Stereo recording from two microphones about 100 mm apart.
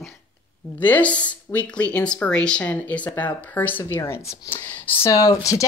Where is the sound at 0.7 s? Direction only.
15° left (ahead or behind).